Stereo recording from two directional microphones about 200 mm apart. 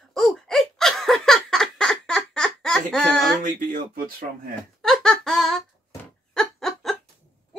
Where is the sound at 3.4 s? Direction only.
45° right (ahead or behind).